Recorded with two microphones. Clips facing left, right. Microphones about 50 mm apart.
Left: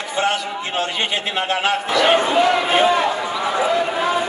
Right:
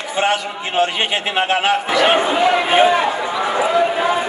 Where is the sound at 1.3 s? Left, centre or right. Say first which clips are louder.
Right 4 dB; centre.